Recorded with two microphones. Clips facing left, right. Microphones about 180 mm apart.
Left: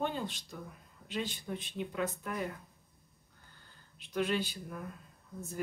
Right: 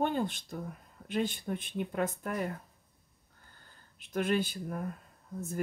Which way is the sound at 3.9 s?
50° right (ahead or behind).